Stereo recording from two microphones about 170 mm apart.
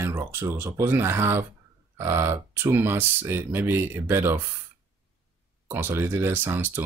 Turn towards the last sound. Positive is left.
turn(degrees=-10)  # may be behind; listen again after turning